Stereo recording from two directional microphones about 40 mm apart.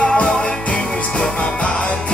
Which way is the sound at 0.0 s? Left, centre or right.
Left.